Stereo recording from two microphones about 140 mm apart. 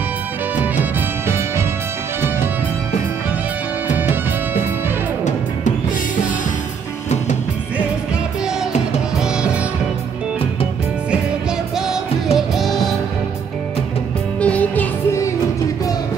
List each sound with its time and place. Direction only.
0.6 s music: 15° right (ahead or behind)
4.1 s music: 15° right (ahead or behind)
7.7 s music: 5° right (ahead or behind)
11.7 s music: 5° right (ahead or behind)
14.4 s music: 10° left (ahead or behind)